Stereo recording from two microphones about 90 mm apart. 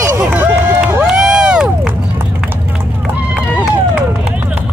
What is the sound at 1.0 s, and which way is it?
Crowd, 5° right (ahead or behind).